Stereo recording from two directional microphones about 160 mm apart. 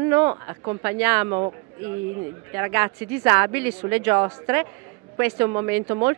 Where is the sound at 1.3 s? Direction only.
30° right (ahead or behind).